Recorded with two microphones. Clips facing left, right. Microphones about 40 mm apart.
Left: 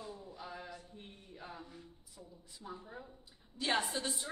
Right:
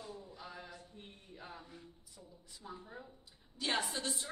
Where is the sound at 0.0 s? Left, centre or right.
Centre.